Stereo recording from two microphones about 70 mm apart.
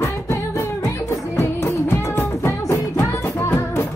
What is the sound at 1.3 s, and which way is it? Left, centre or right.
Music, left.